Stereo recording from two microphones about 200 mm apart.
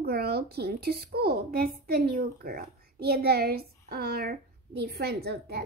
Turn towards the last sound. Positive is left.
turn(degrees=-55)  # may be behind; listen again after turning